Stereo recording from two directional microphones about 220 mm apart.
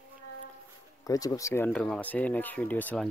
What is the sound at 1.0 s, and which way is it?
Speech, 15° left (ahead or behind).